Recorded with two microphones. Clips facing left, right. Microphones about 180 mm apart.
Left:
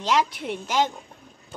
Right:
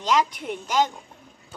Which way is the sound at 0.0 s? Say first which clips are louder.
Even; 5° left (ahead or behind).